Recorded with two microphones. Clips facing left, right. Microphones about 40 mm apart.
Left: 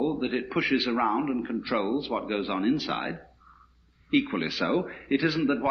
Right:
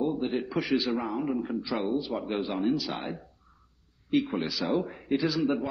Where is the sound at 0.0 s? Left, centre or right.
Left.